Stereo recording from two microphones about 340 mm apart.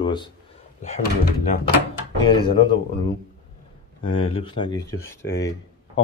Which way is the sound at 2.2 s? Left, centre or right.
Centre.